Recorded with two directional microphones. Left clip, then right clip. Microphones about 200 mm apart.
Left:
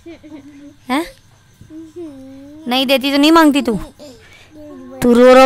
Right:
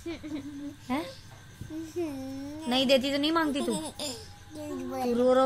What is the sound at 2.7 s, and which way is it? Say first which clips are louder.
A woman's voice: left 11 dB; 40° left (ahead or behind).